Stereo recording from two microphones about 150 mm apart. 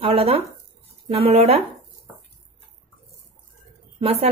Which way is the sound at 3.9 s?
40° right (ahead or behind).